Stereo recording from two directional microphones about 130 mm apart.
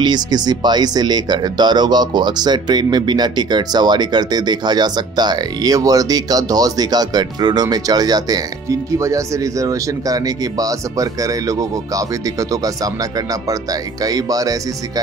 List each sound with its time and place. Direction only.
0.0 s speech: 30° right (ahead or behind)